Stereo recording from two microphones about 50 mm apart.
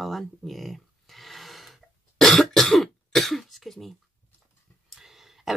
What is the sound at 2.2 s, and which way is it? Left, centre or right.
Cough, centre.